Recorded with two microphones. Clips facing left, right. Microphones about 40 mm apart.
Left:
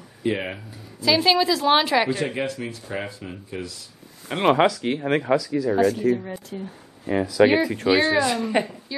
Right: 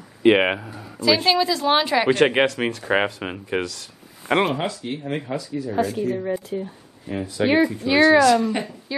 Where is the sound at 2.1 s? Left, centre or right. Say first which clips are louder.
Right 8 dB; right.